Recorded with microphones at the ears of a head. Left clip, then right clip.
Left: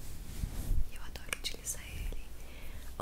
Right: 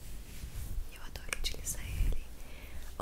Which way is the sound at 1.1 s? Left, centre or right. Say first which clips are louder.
Even; centre.